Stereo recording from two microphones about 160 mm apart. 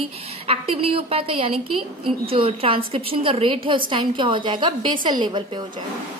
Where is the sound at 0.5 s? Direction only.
35° right (ahead or behind).